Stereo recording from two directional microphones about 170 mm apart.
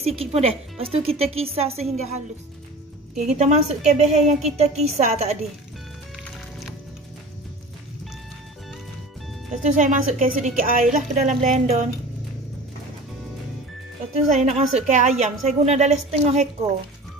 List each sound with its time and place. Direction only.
0.0 s a woman's voice: 35° right (ahead or behind)
3.2 s a woman's voice: 40° right (ahead or behind)
9.6 s a woman's voice: 45° right (ahead or behind)
14.3 s a woman's voice: 45° right (ahead or behind)